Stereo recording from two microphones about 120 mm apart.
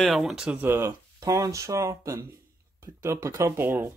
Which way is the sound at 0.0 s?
Centre (ahead or behind).